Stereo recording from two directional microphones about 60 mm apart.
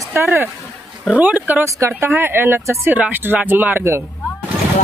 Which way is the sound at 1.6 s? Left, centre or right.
Right.